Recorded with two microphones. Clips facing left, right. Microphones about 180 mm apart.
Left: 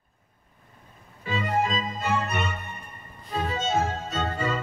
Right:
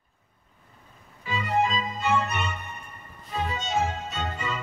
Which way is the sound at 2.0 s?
45° left (ahead or behind).